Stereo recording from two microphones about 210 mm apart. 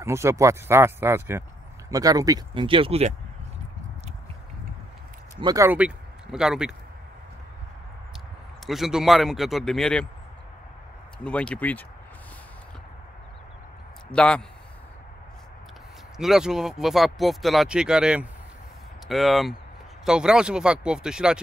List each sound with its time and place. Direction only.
0.0 s speech: 15° right (ahead or behind)
5.4 s speech: 15° right (ahead or behind)
8.6 s speech: centre (ahead or behind)
11.2 s speech: 5° left (ahead or behind)
14.1 s speech: 5° left (ahead or behind)
16.2 s speech: centre (ahead or behind)